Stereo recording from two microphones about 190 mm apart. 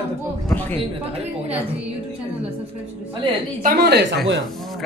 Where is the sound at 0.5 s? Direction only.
10° left (ahead or behind).